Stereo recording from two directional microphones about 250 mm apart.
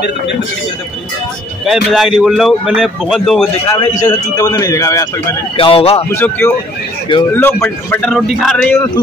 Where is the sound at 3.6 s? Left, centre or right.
Centre.